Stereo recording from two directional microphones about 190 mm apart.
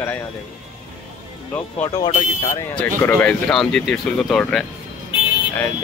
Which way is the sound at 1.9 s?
20° left (ahead or behind).